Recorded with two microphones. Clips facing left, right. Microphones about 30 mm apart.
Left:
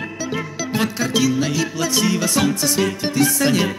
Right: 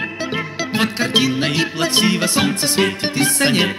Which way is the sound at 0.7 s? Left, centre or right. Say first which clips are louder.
Right 3 dB; right.